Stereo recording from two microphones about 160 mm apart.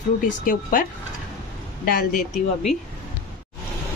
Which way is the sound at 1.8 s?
60° left (ahead or behind).